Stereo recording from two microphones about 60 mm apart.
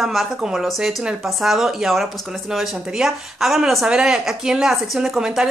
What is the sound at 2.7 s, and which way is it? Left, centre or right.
Speech, centre.